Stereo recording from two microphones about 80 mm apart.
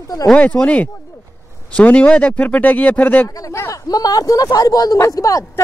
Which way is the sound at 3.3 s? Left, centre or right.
Left.